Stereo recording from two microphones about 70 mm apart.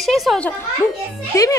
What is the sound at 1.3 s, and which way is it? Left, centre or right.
Speech, left.